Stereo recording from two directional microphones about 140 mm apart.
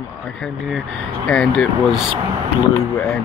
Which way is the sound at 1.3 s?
5° left (ahead or behind).